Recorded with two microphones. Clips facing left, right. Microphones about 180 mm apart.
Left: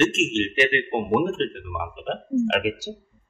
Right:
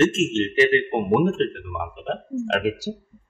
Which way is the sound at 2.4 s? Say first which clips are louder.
Even; 35° right (ahead or behind).